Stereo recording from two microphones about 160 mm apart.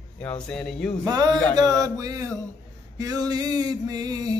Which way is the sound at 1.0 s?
25° right (ahead or behind).